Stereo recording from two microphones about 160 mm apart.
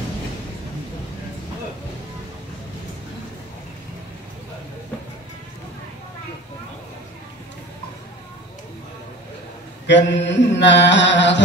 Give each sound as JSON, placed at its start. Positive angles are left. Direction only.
{"t": 9.8, "sound": "mantra", "side_deg": 90}